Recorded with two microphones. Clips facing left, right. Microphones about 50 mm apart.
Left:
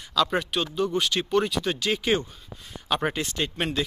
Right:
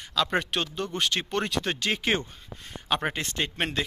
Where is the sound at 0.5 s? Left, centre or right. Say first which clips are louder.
Left 4 dB; right.